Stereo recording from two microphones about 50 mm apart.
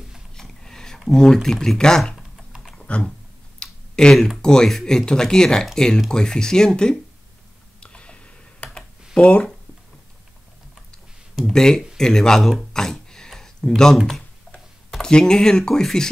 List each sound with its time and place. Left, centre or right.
0.4 s speech: centre
2.9 s a sound: left
4.4 s speech: centre
7.8 s computer keyboard: left
11.3 s speech: centre